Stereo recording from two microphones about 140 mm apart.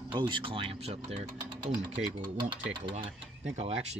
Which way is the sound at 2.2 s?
35° right (ahead or behind).